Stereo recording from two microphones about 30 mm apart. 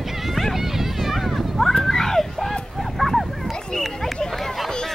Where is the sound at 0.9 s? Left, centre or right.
Centre.